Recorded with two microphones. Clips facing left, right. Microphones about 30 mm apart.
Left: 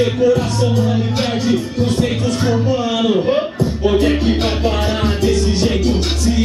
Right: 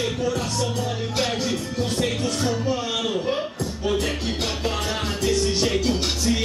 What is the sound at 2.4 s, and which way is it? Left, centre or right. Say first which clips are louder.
Music: left 9 dB; left.